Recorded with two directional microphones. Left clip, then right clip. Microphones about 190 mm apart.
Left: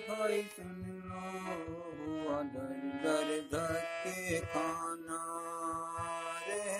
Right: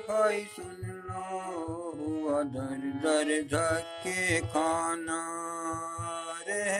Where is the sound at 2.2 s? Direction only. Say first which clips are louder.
Right 7 dB; 15° left (ahead or behind).